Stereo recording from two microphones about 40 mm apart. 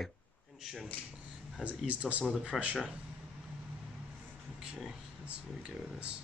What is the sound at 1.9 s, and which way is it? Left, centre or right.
Speech, right.